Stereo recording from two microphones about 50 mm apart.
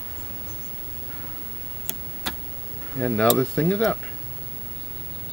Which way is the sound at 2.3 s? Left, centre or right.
Centre.